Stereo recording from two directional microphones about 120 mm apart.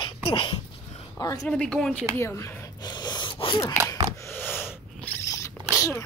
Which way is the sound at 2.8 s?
35° left (ahead or behind).